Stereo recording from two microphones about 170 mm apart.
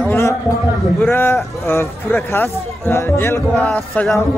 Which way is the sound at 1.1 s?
15° left (ahead or behind).